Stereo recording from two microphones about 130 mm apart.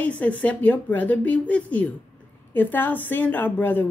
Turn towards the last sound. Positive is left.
turn(degrees=15)  # may be behind; listen again after turning